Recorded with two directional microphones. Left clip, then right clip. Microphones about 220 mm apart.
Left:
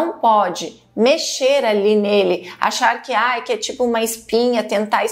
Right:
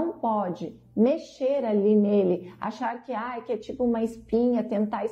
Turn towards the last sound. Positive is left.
turn(degrees=10)  # may be behind; listen again after turning